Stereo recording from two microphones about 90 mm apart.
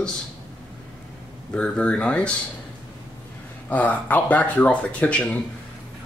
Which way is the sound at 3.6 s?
20° left (ahead or behind).